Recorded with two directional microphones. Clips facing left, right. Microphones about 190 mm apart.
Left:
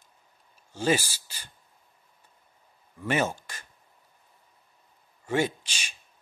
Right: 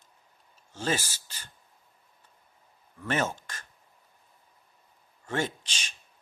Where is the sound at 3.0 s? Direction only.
10° left (ahead or behind).